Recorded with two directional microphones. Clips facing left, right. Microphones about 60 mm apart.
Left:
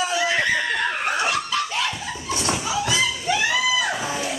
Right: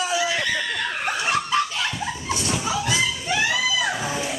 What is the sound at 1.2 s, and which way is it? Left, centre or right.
Snicker, right.